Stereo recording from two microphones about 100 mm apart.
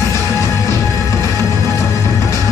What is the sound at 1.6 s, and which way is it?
Music, 30° left (ahead or behind).